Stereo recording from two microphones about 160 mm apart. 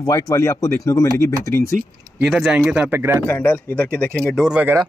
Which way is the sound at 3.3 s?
10° left (ahead or behind).